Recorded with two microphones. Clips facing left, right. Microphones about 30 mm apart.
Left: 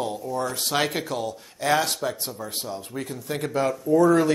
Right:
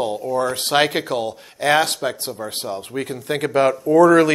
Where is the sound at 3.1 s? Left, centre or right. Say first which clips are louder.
Right 7 dB; right.